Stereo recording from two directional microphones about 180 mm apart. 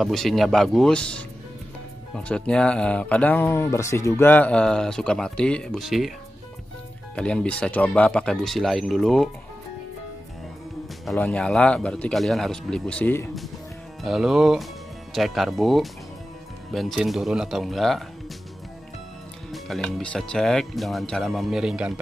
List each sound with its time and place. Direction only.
0.0 s speech: centre (ahead or behind)
2.1 s speech: 5° left (ahead or behind)
7.2 s speech: 5° left (ahead or behind)
11.1 s speech: 5° left (ahead or behind)
14.0 s speech: centre (ahead or behind)
19.5 s speech: 5° left (ahead or behind)